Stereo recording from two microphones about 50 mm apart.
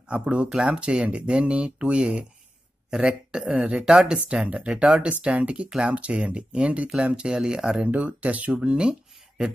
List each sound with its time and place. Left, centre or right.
0.1 s a man's voice: right
4.0 s a man's voice: right
7.9 s speech: right